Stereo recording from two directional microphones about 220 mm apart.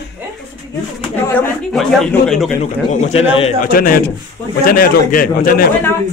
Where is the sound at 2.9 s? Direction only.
30° left (ahead or behind).